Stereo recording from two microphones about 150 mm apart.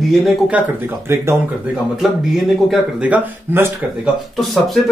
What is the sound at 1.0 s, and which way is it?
Speech, 20° right (ahead or behind).